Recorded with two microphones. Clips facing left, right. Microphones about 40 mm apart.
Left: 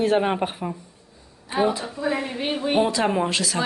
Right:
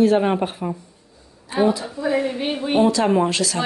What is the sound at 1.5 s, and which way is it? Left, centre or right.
Speech, left.